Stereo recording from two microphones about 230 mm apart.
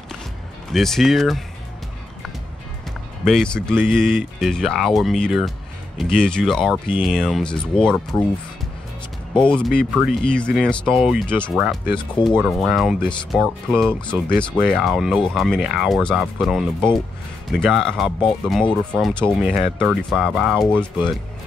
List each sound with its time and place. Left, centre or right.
0.7 s speech: centre
3.3 s speech: centre
9.4 s speech: centre
12.0 s speech: left
12.4 s speech: centre